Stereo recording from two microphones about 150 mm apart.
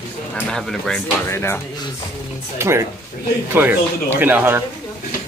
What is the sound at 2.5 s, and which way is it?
Speech, 20° right (ahead or behind).